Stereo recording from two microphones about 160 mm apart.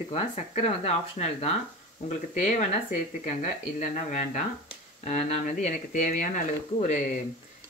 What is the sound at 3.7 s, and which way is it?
Speech, 50° left (ahead or behind).